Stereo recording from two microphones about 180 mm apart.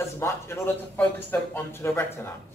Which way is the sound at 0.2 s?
10° left (ahead or behind).